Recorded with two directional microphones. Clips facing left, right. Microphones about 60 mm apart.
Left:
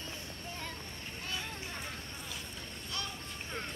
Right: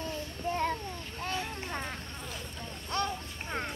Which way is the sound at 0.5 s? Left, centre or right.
Right.